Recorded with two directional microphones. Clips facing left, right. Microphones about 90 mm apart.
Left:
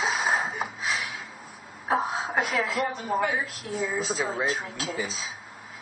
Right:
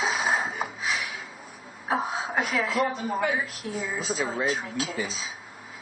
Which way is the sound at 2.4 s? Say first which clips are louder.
Right 1 dB; 35° left (ahead or behind).